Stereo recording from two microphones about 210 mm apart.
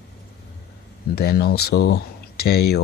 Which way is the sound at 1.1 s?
45° left (ahead or behind).